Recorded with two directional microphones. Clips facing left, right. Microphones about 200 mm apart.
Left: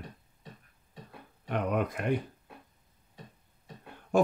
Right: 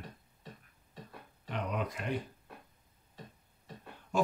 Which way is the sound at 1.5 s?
55° left (ahead or behind).